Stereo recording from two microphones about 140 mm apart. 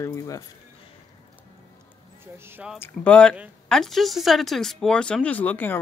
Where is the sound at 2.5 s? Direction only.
10° right (ahead or behind).